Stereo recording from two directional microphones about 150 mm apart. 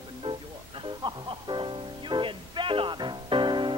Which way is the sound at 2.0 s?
30° right (ahead or behind).